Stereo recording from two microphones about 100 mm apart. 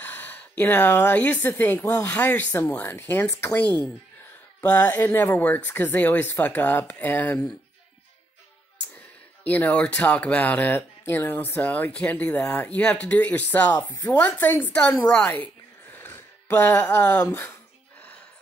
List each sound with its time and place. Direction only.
0.0 s speech: 15° left (ahead or behind)
9.4 s speech: 15° left (ahead or behind)
16.0 s a sound: 25° left (ahead or behind)
17.3 s speech: 25° left (ahead or behind)